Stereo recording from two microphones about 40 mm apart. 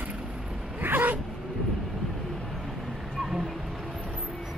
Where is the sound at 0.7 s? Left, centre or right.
Right.